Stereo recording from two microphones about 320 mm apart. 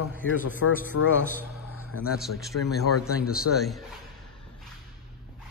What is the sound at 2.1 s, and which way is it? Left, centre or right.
A man's voice, centre.